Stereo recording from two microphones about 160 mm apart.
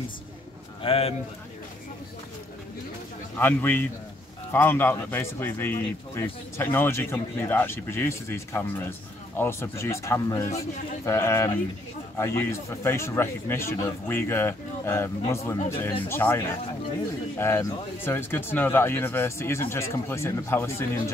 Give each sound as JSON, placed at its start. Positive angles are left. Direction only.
{"t": 0.8, "sound": "a man's voice", "side_deg": 35}
{"t": 3.3, "sound": "a man's voice", "side_deg": 10}